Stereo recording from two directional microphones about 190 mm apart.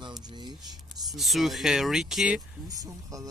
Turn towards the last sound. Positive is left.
turn(degrees=-20)  # may be behind; listen again after turning